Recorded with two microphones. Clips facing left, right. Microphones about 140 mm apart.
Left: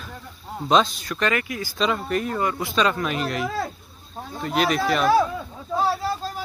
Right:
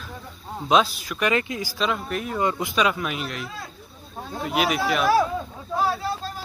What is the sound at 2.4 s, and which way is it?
Speech, 20° right (ahead or behind).